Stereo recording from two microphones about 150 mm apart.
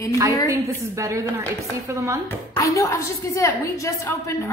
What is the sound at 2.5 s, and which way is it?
A woman's voice, 20° left (ahead or behind).